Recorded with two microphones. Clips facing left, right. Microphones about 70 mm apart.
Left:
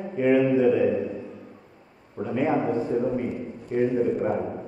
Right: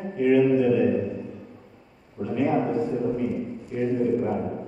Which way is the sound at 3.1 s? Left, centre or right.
Left.